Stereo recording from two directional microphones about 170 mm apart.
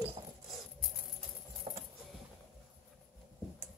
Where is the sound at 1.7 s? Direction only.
30° right (ahead or behind).